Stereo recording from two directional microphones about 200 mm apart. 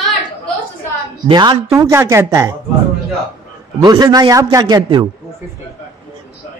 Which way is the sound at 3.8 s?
20° right (ahead or behind).